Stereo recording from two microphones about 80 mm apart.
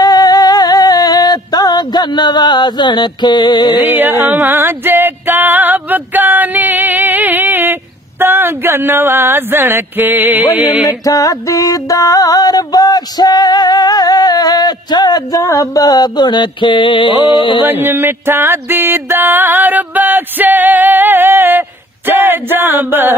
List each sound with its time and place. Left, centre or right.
0.0 s music: left
4.3 s female singing: right
8.2 s a sound: right
10.6 s music: centre
10.9 s music: left
15.4 s mantra: left
17.6 s music: right